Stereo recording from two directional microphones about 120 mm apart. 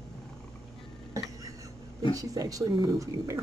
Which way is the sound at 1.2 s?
30° right (ahead or behind).